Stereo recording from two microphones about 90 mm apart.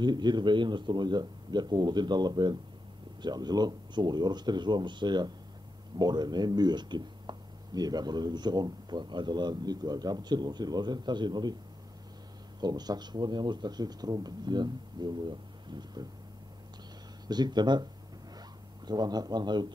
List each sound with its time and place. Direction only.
0.0 s speech: 55° right (ahead or behind)
12.5 s speech: 50° right (ahead or behind)
17.3 s speech: 50° right (ahead or behind)
18.9 s speech: 50° right (ahead or behind)